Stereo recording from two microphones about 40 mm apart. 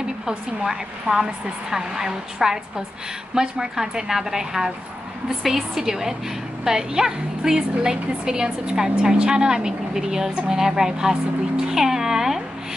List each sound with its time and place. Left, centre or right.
0.7 s a woman's voice: centre